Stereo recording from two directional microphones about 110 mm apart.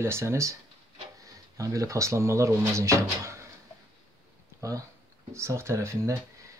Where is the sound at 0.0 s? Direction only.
25° right (ahead or behind).